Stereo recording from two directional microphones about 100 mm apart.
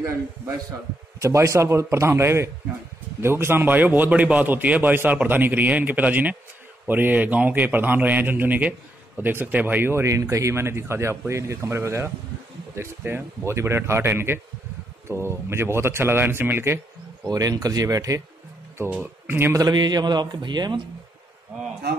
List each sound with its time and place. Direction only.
1.2 s a man's voice: 30° right (ahead or behind)
17.3 s speech: 40° right (ahead or behind)
19.2 s speech: 20° right (ahead or behind)
19.5 s a man's voice: 40° right (ahead or behind)